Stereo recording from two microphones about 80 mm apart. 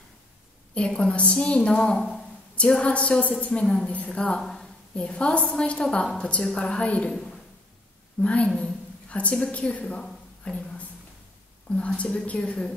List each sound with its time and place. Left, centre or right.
0.7 s a woman's voice: centre
2.0 s a sound: centre
2.5 s a woman's voice: centre
4.4 s a woman's voice: centre
8.2 s a woman's voice: centre
10.0 s a sound: centre
11.7 s a woman's voice: centre